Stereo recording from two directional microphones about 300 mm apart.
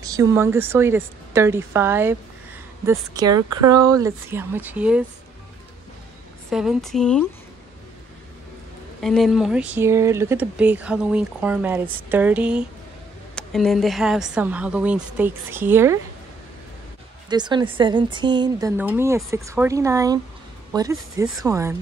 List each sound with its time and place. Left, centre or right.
0.0 s speech: centre
3.3 s speech: right
3.7 s speech: centre
6.5 s speech: centre
9.0 s speech: centre
17.3 s speech: centre